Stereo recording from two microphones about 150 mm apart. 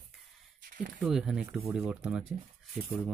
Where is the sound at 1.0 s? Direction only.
5° right (ahead or behind).